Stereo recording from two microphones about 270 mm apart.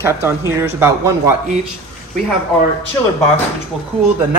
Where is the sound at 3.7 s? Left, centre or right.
Centre.